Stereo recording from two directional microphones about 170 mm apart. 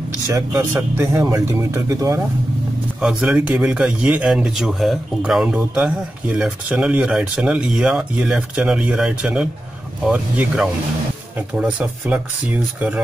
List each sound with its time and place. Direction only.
0.3 s speech: 15° right (ahead or behind)
3.0 s a man's voice: 5° right (ahead or behind)